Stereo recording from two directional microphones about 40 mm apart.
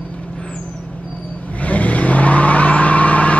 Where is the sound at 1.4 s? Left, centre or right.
Left.